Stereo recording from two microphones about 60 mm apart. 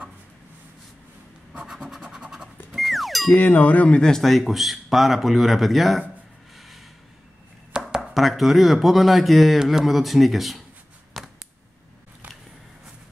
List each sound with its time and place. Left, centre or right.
1.7 s scratch: centre
2.0 s music: centre
3.3 s a sound: left
4.0 s speech: centre
7.9 s speech: centre
11.1 s a sound: centre